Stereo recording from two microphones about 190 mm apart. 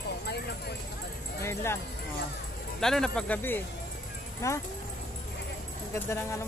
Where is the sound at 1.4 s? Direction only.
15° left (ahead or behind).